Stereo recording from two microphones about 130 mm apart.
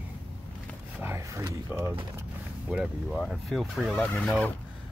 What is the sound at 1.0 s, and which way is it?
Speech, 20° right (ahead or behind).